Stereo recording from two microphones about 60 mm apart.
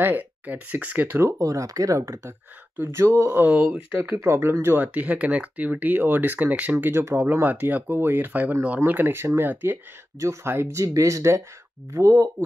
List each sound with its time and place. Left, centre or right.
0.0 s speech: right
1.4 s speech: right
3.3 s speech: right
4.0 s speech: right
4.8 s speech: right
6.9 s speech: right
10.1 s speech: right